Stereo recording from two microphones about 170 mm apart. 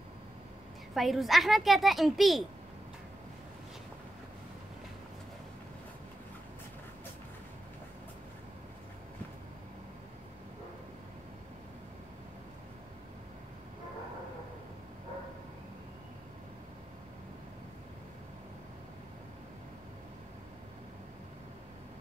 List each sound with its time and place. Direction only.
0.9 s a woman's voice: centre (ahead or behind)